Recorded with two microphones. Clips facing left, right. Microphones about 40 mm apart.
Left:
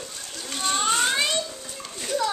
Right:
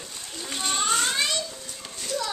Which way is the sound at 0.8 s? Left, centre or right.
Centre.